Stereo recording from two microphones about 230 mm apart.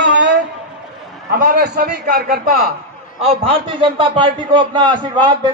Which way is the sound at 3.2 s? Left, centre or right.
Right.